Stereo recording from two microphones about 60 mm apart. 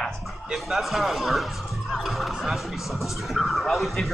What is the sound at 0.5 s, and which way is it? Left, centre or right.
Speech, centre.